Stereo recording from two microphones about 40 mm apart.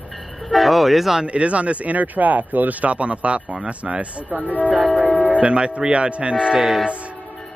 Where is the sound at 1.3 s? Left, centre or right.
Right.